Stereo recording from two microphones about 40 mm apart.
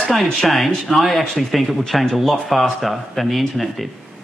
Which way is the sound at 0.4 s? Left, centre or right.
Centre.